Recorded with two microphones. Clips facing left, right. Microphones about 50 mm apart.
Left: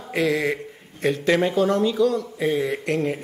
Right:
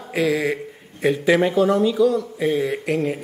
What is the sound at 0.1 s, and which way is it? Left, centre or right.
Speech, centre.